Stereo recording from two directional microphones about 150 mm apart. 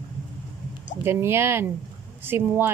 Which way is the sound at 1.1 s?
15° right (ahead or behind).